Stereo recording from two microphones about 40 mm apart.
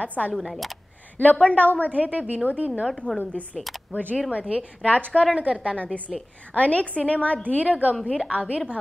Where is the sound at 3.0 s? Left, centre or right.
Right.